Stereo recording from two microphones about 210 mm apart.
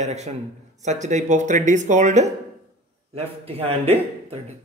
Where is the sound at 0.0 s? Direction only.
35° right (ahead or behind).